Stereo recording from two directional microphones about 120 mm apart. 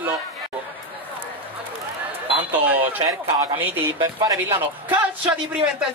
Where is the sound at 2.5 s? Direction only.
15° right (ahead or behind).